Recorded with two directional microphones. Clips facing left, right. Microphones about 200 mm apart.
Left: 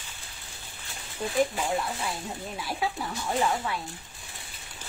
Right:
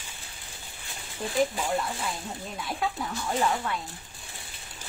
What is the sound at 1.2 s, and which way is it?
Speech, centre (ahead or behind).